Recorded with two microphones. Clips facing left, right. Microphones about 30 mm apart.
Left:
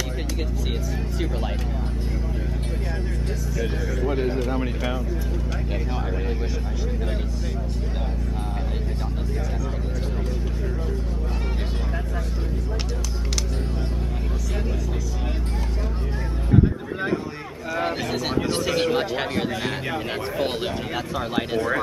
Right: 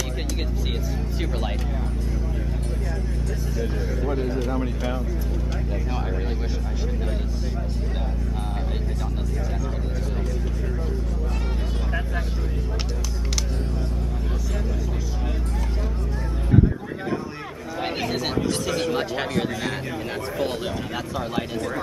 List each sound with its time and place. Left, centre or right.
4.1 s speech: left
18.0 s speech: centre
18.5 s speech: centre
20.3 s speech: left